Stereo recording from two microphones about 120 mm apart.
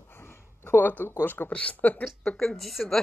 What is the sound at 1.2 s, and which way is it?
Speech, 15° left (ahead or behind).